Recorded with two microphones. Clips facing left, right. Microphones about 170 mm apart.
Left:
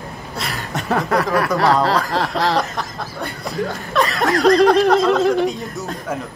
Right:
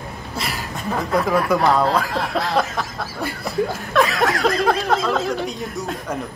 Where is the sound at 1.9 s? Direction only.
90° left.